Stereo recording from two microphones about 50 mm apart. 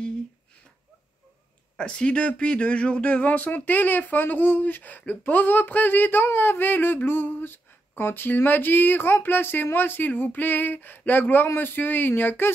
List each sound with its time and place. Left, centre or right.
1.8 s speech: centre; by 12.5 s left